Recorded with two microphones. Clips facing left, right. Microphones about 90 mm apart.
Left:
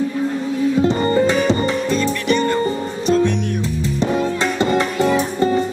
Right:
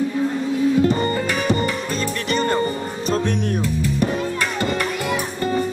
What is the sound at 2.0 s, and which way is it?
Music, 35° right (ahead or behind).